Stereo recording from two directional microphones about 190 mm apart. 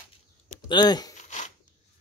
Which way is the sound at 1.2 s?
40° left (ahead or behind).